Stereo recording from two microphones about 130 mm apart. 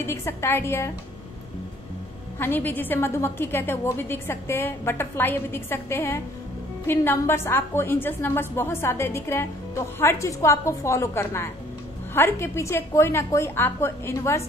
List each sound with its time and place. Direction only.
0.0 s a woman's voice: 20° left (ahead or behind)
2.3 s a woman's voice: 15° left (ahead or behind)